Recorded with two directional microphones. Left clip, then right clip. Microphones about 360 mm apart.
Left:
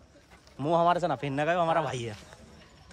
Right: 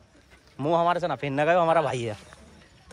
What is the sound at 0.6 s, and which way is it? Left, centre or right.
A man's voice, centre.